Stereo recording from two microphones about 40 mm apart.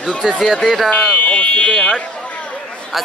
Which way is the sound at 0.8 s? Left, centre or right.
Left.